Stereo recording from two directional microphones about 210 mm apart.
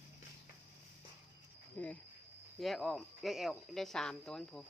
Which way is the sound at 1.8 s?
10° left (ahead or behind).